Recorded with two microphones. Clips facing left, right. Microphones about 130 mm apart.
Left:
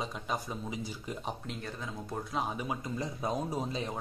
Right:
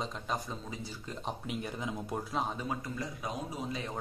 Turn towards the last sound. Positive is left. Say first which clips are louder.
# left 4 dB
turn(degrees=30)  # may be behind; listen again after turning